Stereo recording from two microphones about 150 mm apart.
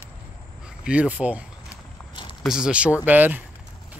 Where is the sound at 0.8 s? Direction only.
10° right (ahead or behind).